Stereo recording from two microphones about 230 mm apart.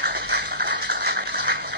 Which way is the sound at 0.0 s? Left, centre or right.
Right.